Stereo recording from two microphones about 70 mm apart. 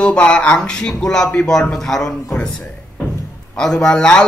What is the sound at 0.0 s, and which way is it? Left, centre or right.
Speech, centre.